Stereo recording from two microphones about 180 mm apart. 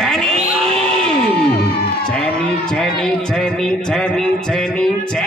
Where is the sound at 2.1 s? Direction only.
5° left (ahead or behind).